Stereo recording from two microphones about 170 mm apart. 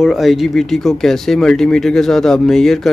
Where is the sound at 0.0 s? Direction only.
Centre (ahead or behind).